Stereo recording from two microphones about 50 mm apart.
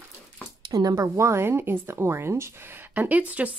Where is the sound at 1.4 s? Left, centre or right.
Right.